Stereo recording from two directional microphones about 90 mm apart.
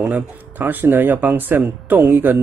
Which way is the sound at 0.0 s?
20° right (ahead or behind).